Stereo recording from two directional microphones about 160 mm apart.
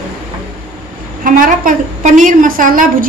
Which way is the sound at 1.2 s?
55° right (ahead or behind).